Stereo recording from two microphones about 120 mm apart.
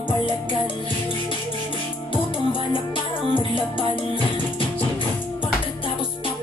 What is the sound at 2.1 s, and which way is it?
Music, 45° left (ahead or behind).